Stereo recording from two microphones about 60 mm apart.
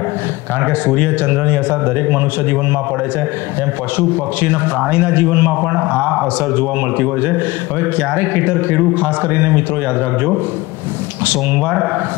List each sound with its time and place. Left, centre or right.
0.8 s speech: right
4.8 s speech: right
8.2 s speech: right
11.6 s speech: centre